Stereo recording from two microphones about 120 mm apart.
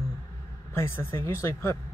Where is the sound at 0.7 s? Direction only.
20° left (ahead or behind).